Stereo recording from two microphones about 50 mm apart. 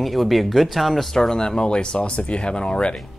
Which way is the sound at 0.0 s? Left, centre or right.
Centre.